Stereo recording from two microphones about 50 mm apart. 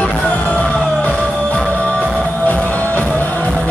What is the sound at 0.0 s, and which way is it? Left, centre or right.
Music, left.